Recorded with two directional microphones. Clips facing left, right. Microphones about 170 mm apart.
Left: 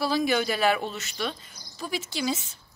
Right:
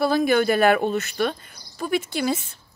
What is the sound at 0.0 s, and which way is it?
Speech, 50° right (ahead or behind).